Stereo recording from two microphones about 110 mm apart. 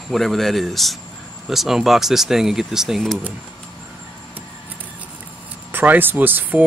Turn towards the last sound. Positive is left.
turn(degrees=-15)  # may be behind; listen again after turning